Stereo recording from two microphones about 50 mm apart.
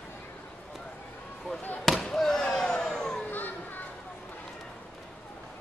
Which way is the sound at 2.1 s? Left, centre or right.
Centre.